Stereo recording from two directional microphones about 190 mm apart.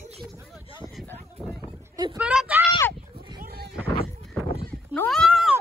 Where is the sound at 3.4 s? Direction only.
55° right (ahead or behind).